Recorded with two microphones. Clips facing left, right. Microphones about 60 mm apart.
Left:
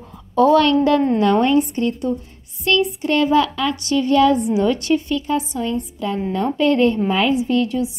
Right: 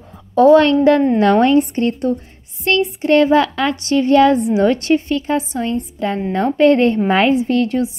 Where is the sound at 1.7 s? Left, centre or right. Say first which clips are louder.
Right 3 dB; right.